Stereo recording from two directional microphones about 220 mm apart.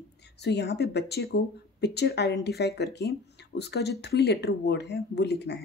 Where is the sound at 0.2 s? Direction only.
50° left (ahead or behind).